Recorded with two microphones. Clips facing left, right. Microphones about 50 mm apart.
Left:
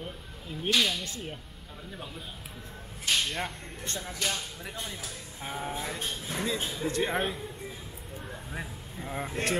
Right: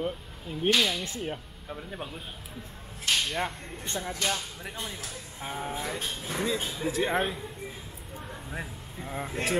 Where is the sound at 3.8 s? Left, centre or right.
Centre.